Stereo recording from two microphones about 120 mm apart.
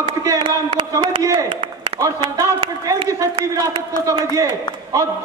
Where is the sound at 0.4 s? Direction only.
45° right (ahead or behind).